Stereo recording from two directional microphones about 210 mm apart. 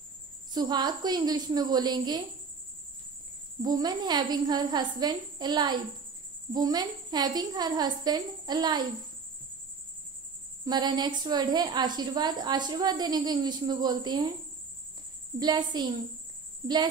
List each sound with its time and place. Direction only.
0.5 s a woman's voice: 20° right (ahead or behind)
3.6 s a woman's voice: 20° right (ahead or behind)
10.6 s a woman's voice: 20° right (ahead or behind)
15.3 s a woman's voice: 20° right (ahead or behind)